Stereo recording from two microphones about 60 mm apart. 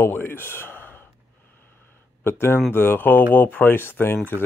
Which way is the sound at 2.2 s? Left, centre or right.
Left.